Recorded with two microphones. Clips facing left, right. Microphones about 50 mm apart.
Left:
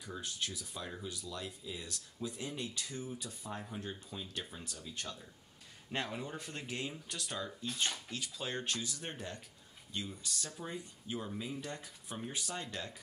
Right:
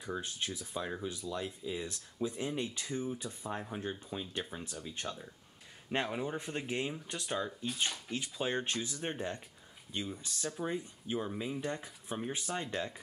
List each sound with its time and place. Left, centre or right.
0.0 s speech: right
7.6 s speech: centre
8.1 s speech: right